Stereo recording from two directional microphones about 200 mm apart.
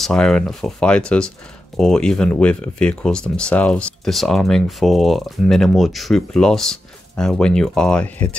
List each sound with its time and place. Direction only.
0.0 s speech: 5° left (ahead or behind)